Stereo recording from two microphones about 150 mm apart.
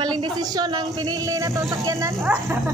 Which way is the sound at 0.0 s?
30° right (ahead or behind).